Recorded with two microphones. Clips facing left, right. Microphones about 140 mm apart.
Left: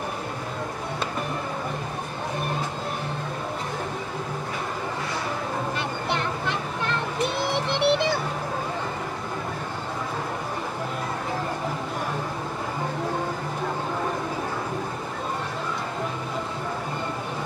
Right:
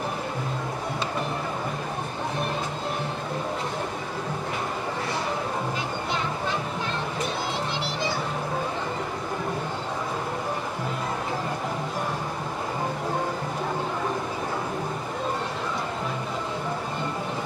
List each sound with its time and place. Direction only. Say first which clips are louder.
5.8 s vehicle: left 1 dB; 65° left (ahead or behind)
7.5 s music: left 7 dB; 65° left (ahead or behind)